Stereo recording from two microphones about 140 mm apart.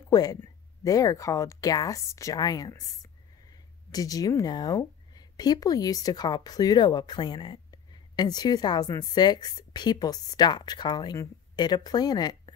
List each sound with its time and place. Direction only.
0.1 s speech: 25° left (ahead or behind)